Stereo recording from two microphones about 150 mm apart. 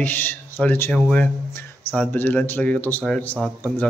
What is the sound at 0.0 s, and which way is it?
Speech, 10° left (ahead or behind).